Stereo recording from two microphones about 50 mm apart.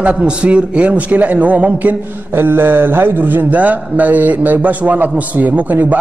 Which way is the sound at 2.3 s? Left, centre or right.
Right.